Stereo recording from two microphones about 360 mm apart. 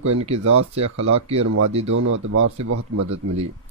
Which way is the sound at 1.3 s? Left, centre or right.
Right.